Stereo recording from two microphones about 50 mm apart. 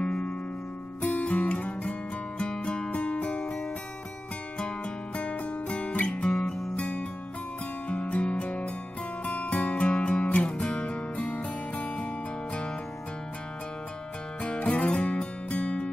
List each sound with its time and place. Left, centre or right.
0.0 s music: centre
4.6 s music: left
6.3 s music: centre
6.8 s music: left
14.4 s music: left